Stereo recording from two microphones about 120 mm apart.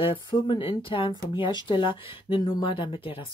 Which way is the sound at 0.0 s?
45° left (ahead or behind).